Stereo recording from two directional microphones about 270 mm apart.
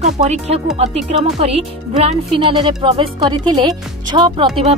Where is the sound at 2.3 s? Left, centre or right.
Centre.